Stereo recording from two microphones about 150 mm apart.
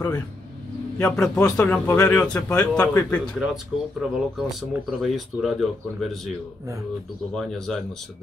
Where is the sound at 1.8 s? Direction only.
20° left (ahead or behind).